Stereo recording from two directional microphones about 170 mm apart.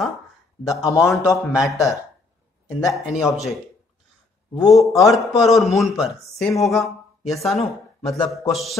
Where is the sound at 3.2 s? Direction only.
Centre (ahead or behind).